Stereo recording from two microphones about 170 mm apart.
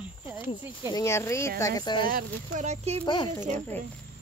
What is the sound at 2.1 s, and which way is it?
Speech, 45° right (ahead or behind).